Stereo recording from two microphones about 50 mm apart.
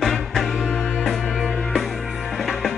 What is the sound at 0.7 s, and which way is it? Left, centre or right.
Music, left.